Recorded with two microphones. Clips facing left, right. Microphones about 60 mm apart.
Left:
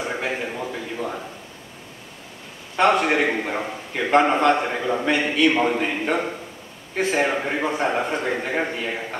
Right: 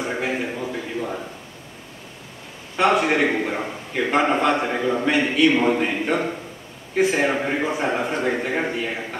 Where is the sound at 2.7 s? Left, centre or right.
Centre.